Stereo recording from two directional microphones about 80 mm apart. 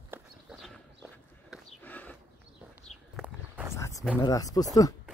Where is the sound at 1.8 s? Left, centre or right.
Left.